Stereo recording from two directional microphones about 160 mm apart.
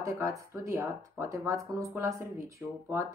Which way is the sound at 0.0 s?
20° right (ahead or behind).